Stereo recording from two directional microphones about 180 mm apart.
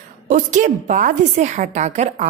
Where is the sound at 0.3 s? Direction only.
45° right (ahead or behind).